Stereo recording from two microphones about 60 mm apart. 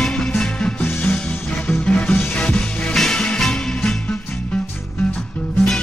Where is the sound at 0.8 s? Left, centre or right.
Left.